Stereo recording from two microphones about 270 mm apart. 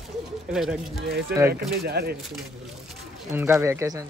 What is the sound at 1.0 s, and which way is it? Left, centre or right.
Speech, right.